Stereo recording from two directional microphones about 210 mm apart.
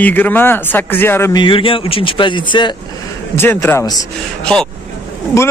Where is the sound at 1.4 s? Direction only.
25° left (ahead or behind).